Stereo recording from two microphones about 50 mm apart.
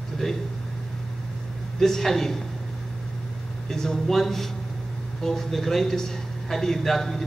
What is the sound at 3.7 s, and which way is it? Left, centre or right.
A man's voice, centre.